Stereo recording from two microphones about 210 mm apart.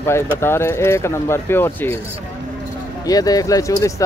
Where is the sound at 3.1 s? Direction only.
15° left (ahead or behind).